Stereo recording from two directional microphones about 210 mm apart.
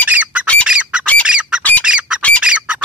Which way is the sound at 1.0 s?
5° left (ahead or behind).